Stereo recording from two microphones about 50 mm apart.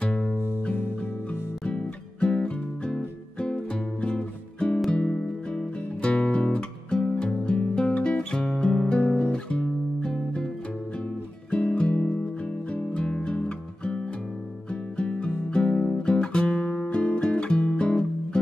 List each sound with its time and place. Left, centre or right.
1.6 s music: left
9.0 s guitar: left
11.9 s music: left